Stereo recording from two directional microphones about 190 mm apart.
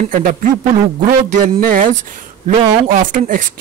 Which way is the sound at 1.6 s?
45° right (ahead or behind).